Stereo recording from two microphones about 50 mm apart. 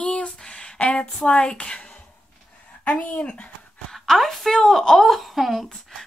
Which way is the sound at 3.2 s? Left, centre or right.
Left.